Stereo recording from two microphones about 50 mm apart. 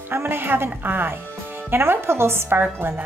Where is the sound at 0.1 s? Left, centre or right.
Right.